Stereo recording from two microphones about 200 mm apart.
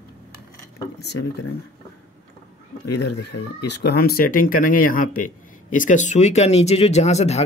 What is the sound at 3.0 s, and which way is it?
Speech, 60° left (ahead or behind).